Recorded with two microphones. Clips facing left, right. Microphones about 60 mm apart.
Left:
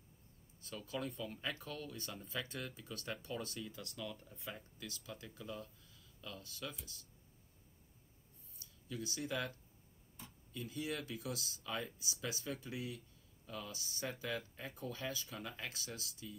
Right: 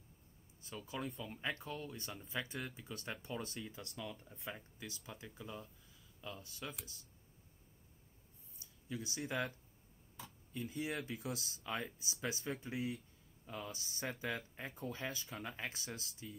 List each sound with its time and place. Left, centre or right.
0.6 s speech: right
8.5 s speech: right
10.5 s speech: right